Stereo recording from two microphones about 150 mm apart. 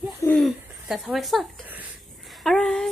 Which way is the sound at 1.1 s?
Centre (ahead or behind).